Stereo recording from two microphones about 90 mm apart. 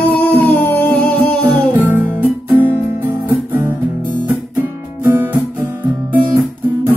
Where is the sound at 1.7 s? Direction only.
20° right (ahead or behind).